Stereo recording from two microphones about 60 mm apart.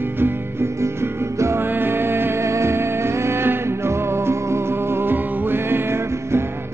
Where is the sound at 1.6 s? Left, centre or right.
Right.